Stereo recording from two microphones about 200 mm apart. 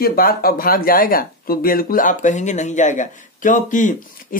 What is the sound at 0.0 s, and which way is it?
Speech, 45° left (ahead or behind).